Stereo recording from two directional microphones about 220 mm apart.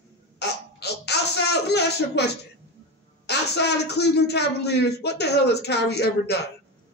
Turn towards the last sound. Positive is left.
turn(degrees=50)  # may be behind; listen again after turning